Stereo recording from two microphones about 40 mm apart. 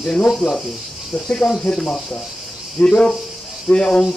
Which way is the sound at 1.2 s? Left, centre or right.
Left.